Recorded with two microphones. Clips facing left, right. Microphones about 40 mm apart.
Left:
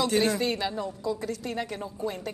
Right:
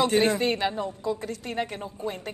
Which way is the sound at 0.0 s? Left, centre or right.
Right.